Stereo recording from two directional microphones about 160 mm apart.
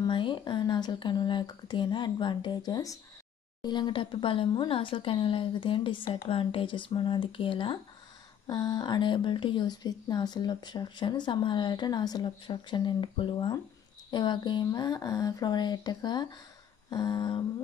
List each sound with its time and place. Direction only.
0.0 s a woman's voice: 30° left (ahead or behind)